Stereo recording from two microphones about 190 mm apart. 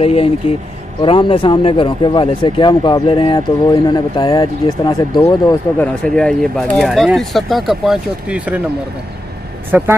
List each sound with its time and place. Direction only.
0.0 s speech: 30° left (ahead or behind)
5.8 s speech: 5° left (ahead or behind)
9.7 s speech: 10° right (ahead or behind)